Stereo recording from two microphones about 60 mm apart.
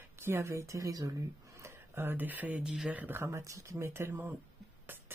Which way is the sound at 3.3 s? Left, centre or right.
Right.